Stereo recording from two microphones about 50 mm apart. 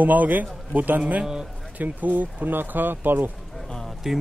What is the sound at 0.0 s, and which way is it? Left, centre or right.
Speech, right.